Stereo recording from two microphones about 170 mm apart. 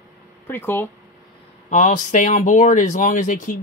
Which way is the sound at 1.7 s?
50° left (ahead or behind).